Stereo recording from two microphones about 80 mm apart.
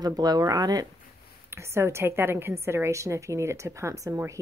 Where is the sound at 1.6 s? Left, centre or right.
Right.